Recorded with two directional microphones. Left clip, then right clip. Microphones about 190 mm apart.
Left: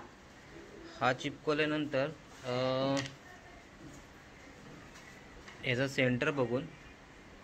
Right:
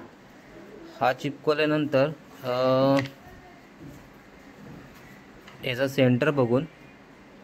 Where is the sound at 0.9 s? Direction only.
25° right (ahead or behind).